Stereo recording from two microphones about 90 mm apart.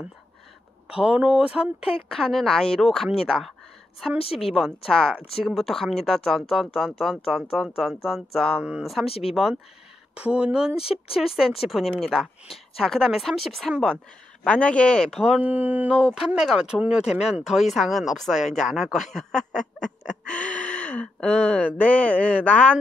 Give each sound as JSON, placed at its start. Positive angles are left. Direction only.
{"t": 0.8, "sound": "speech", "side_deg": -10}
{"t": 2.0, "sound": "speech", "side_deg": 0}
{"t": 8.5, "sound": "speech", "side_deg": -10}
{"t": 9.0, "sound": "speech", "side_deg": 90}
{"t": 9.3, "sound": "speech", "side_deg": -5}
{"t": 10.8, "sound": "speech", "side_deg": 90}
{"t": 11.1, "sound": "speech", "side_deg": -5}
{"t": 14.4, "sound": "speech", "side_deg": 15}
{"t": 15.4, "sound": "speech", "side_deg": -20}